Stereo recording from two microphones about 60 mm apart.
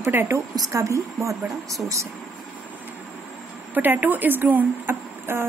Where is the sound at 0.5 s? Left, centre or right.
Right.